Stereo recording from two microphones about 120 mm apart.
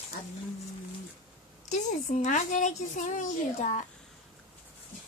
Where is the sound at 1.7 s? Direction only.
90° left.